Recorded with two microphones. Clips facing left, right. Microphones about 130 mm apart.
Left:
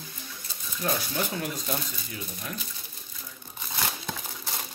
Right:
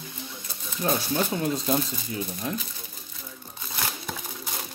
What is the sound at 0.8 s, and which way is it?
Speech, 30° right (ahead or behind).